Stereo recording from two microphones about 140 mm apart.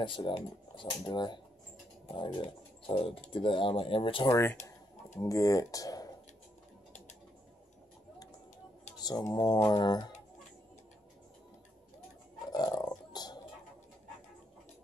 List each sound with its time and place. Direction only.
0.0 s speech: 35° left (ahead or behind)
4.3 s speech: 15° left (ahead or behind)
9.0 s speech: 30° left (ahead or behind)
12.4 s a sound: 30° left (ahead or behind)